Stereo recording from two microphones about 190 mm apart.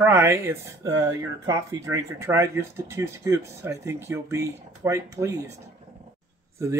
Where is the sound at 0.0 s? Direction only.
10° right (ahead or behind).